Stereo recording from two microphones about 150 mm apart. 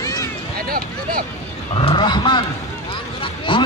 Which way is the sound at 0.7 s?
75° right (ahead or behind).